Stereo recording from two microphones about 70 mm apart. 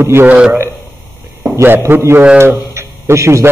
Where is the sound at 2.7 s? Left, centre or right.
Right.